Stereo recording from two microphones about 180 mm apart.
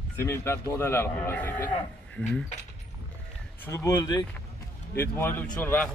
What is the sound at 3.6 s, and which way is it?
Speech, 15° left (ahead or behind).